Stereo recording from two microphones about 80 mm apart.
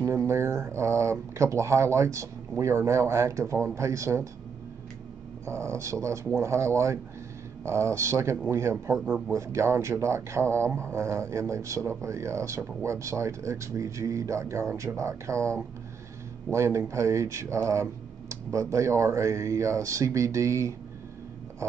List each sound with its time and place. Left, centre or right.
0.0 s speech: right
5.4 s speech: right